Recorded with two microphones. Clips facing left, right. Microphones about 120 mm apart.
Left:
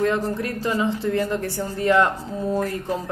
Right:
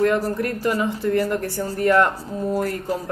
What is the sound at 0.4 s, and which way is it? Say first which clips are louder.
A woman's voice: right 2 dB; 20° left (ahead or behind).